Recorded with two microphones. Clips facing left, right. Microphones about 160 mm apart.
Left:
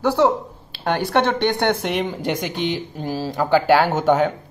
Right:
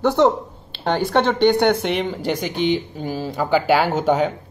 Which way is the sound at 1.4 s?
15° right (ahead or behind).